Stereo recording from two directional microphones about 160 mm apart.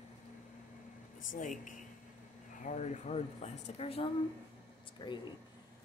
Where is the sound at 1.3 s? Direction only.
55° left (ahead or behind); by 4.1 s 40° left (ahead or behind).